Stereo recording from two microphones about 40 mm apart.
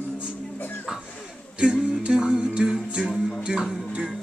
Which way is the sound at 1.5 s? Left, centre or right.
Right.